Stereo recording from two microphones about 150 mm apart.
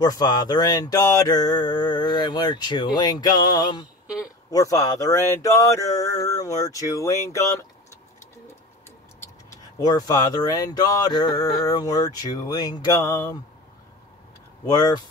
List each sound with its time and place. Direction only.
0.0 s mantra: 25° left (ahead or behind)
9.8 s mantra: 25° left (ahead or behind)
14.7 s mantra: 25° left (ahead or behind)